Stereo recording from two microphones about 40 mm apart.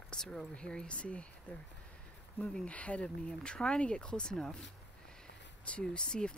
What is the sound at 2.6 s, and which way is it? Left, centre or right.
Speech, left.